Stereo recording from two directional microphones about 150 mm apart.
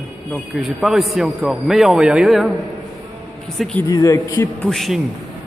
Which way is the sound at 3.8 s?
20° left (ahead or behind).